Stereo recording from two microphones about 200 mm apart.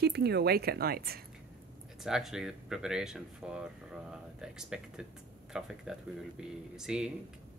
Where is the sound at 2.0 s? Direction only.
Centre (ahead or behind).